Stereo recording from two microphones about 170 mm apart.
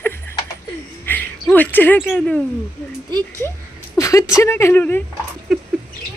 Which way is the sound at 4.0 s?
20° left (ahead or behind).